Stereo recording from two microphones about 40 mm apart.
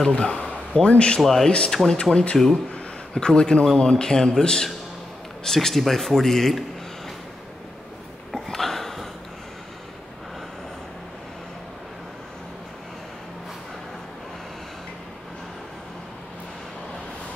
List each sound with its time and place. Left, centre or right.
0.1 s a man's voice: left
1.2 s speech: centre
1.9 s speech: centre
2.3 s speech: centre
3.3 s speech: centre
8.5 s a sound: centre